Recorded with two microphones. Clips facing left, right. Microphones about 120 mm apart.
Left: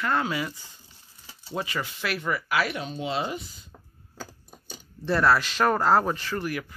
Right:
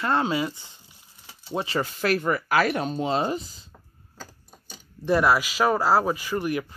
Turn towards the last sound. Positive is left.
turn(degrees=-20)  # may be behind; listen again after turning